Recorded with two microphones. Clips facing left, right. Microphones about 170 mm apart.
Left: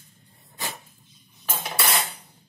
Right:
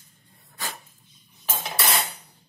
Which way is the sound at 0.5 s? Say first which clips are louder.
Left 1 dB; 20° left (ahead or behind).